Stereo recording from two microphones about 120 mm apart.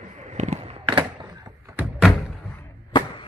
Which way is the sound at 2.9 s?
40° left (ahead or behind).